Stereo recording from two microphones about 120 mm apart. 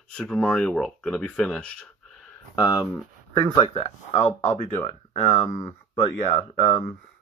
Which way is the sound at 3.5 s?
60° left (ahead or behind).